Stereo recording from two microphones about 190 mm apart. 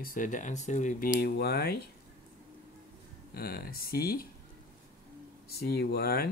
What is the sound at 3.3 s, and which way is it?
Speech, 55° left (ahead or behind).